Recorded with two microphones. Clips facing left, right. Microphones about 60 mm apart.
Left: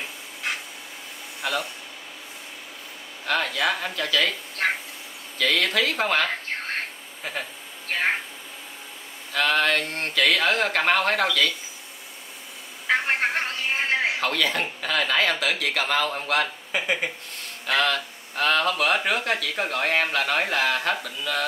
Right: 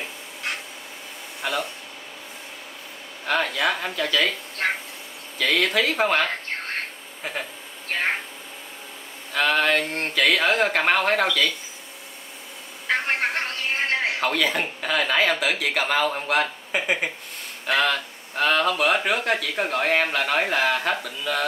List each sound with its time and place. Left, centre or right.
0.0 s a sound: centre
1.4 s speech: centre
3.3 s speech: centre
9.3 s speech: centre
12.8 s a sound: centre
14.3 s speech: centre